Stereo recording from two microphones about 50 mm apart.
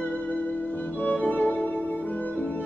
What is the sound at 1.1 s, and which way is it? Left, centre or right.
Violin, left.